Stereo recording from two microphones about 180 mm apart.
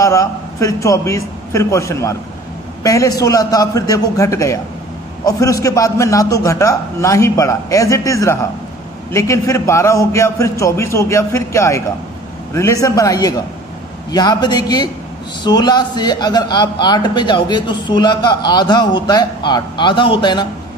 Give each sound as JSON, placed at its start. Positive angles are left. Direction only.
{"t": 0.0, "sound": "a man's voice", "side_deg": 15}